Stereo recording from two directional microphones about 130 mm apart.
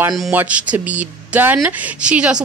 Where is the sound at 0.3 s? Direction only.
10° right (ahead or behind).